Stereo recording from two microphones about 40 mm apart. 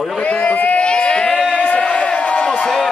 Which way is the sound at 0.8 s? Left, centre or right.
Left.